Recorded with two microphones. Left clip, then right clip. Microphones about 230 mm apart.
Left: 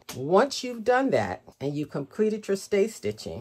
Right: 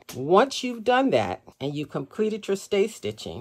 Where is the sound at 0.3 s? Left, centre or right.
Right.